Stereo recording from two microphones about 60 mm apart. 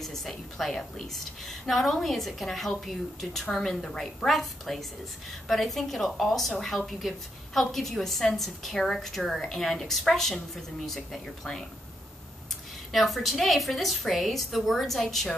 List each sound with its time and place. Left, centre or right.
0.0 s a woman's voice: centre
12.9 s a woman's voice: centre